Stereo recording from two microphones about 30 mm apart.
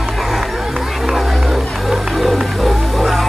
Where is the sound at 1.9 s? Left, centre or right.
Centre.